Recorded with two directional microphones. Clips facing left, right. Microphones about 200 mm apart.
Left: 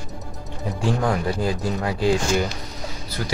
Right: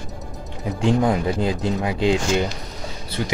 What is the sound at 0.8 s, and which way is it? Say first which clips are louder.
Speech: right 4 dB; 20° right (ahead or behind).